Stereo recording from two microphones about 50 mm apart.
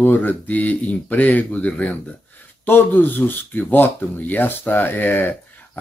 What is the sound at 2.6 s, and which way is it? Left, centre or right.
Speech, left.